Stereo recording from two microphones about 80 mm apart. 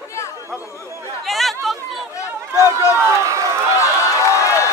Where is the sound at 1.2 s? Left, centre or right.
Centre.